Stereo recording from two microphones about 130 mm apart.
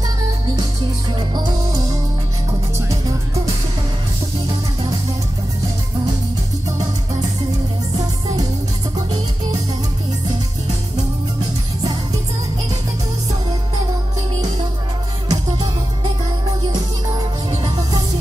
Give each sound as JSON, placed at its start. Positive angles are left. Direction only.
{"t": 1.3, "sound": "music", "side_deg": -35}
{"t": 15.2, "sound": "music", "side_deg": -30}